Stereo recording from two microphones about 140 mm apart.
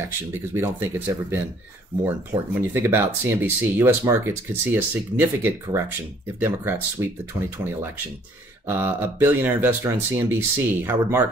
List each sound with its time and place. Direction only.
0.0 s speech: 15° right (ahead or behind)
2.5 s speech: 15° right (ahead or behind)